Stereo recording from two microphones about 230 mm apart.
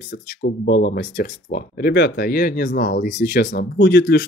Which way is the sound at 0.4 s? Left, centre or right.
Left.